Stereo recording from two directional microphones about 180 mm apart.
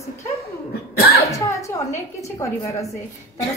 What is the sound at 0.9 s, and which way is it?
Speech, 60° left (ahead or behind).